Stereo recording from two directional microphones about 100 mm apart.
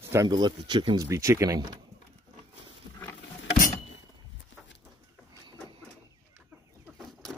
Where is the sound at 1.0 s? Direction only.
30° right (ahead or behind).